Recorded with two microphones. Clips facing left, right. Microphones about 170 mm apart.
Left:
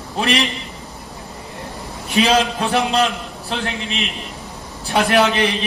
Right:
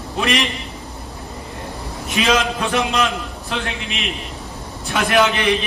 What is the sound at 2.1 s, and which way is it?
A man's voice, 35° left (ahead or behind).